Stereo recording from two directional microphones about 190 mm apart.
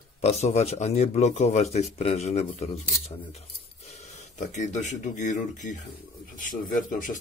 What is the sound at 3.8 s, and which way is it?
Speech, 35° left (ahead or behind).